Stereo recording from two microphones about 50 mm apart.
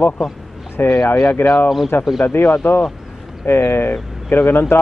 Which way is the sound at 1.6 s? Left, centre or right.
Centre.